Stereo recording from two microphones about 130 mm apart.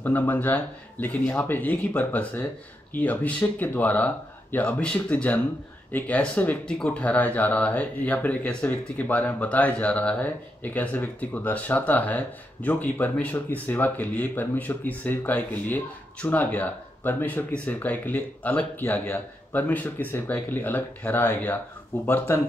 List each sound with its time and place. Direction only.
0.0 s speech: 15° left (ahead or behind)